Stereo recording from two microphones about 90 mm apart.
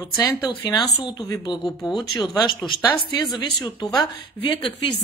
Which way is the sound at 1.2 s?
50° left (ahead or behind).